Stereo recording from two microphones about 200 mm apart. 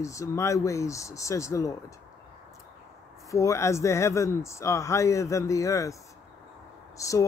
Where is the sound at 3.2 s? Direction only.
15° left (ahead or behind).